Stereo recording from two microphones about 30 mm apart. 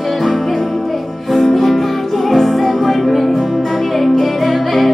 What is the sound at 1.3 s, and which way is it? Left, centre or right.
Music, centre.